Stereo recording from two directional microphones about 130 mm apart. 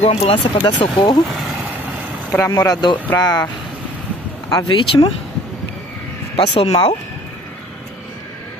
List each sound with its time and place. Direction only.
0.0 s speech: 50° left (ahead or behind)
0.6 s speech: 30° left (ahead or behind)
2.5 s speech: 30° left (ahead or behind)
4.5 s speech: 35° left (ahead or behind)
6.3 s speech: 45° left (ahead or behind)